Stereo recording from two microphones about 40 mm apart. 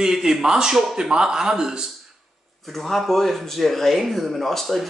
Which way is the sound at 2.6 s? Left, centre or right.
Centre.